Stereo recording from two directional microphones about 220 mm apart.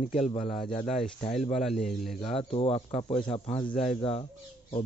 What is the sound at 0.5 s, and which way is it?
Speech, 5° left (ahead or behind).